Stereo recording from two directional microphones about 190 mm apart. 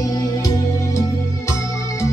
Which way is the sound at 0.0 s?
20° left (ahead or behind).